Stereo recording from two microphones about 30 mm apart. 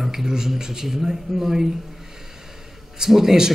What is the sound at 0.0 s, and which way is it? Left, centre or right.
Speech, centre.